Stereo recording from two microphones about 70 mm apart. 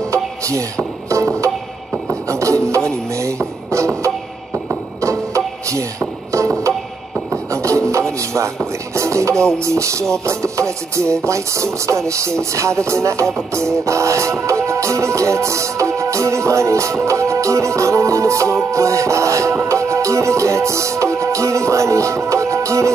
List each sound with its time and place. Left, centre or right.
0.1 s music: right
7.5 s rub: right
8.9 s speech: right
19.7 s music: right